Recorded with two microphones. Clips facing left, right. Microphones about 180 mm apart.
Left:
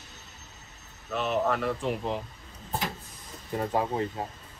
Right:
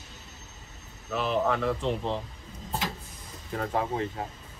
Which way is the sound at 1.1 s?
Centre (ahead or behind).